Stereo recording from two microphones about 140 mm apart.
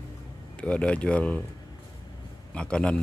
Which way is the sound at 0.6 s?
10° left (ahead or behind).